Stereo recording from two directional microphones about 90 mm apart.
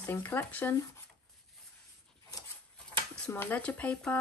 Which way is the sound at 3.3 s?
20° left (ahead or behind).